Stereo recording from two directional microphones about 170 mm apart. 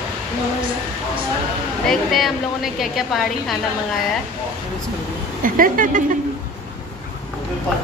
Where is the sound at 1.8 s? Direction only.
Centre (ahead or behind).